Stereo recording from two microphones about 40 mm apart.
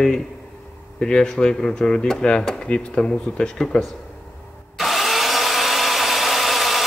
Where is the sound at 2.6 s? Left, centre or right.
Left.